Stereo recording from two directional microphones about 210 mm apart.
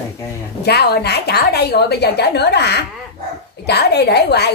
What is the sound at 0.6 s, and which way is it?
A woman's voice, 50° left (ahead or behind).